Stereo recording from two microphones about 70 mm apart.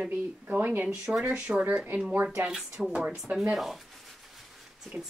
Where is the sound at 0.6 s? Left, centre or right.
Right.